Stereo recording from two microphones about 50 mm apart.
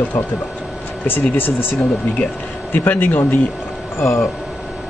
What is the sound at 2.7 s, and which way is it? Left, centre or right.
Speech, left.